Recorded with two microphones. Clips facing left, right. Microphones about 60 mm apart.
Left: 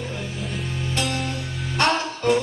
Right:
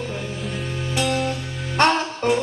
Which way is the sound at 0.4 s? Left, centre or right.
Centre.